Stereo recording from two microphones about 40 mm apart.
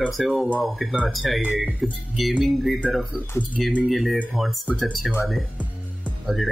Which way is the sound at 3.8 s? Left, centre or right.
Centre.